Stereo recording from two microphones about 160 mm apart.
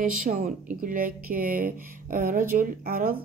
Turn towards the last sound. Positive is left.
turn(degrees=-65)  # may be behind; listen again after turning